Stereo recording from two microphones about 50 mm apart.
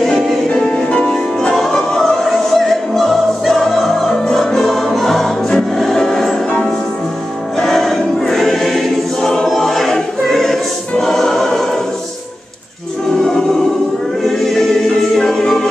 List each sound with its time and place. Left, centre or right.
0.2 s music: centre
0.7 s music: centre
1.6 s opera: centre
4.9 s music: centre
7.5 s choir: centre
13.1 s music: centre
14.2 s choir: centre